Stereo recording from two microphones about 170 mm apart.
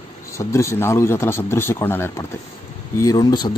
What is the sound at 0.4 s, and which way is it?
Speech, 15° left (ahead or behind).